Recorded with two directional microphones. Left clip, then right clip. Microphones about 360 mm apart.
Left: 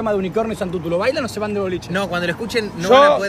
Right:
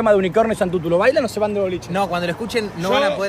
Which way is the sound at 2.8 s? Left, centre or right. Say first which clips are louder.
Left 8 dB; centre.